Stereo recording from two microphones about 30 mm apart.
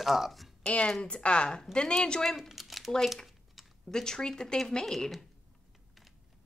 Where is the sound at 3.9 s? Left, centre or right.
Left.